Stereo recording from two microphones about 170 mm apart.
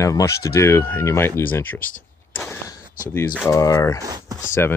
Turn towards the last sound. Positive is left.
turn(degrees=-20)  # may be behind; listen again after turning